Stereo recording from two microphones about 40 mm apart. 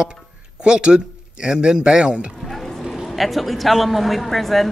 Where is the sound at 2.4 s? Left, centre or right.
Centre.